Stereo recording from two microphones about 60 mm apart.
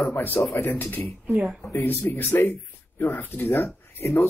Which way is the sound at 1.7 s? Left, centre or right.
Left.